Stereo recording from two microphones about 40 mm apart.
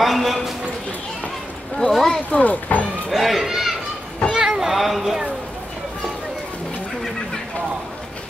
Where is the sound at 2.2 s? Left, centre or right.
Left.